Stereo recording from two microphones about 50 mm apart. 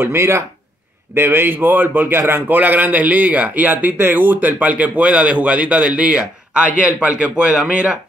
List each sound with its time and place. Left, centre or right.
0.0 s speech: right
2.4 s speech: right